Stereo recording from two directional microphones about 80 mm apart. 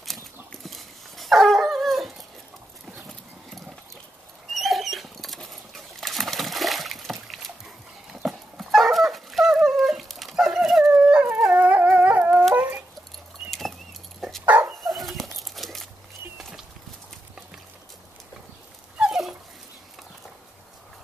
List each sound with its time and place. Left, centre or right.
0.0 s dog: centre
4.5 s rodents: centre
10.9 s dog: centre
12.5 s a sound: right
13.5 s keys jangling: centre
14.4 s dog: right
14.8 s dog: centre
16.3 s horse: centre
18.9 s dog: centre